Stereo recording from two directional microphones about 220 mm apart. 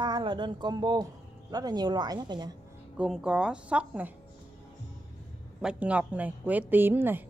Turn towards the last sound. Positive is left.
turn(degrees=-10)  # may be behind; listen again after turning